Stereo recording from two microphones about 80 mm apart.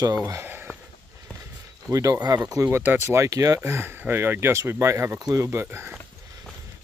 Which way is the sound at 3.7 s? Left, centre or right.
Right.